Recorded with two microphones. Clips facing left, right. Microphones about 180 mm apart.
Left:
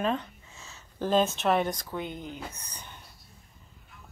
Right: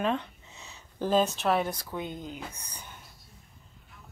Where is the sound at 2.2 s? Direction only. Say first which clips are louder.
Even; 15° right (ahead or behind).